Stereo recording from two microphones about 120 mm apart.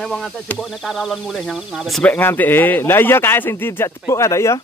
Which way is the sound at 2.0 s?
15° left (ahead or behind).